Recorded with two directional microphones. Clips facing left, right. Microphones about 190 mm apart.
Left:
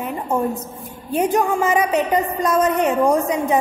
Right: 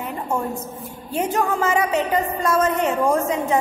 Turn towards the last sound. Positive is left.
turn(degrees=15)  # may be behind; listen again after turning